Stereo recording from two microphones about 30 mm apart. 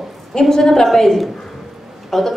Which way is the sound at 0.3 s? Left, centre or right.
Centre.